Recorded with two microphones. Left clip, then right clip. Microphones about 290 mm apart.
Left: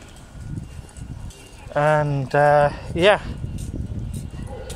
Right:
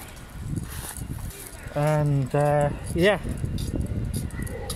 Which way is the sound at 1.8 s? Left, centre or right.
Left.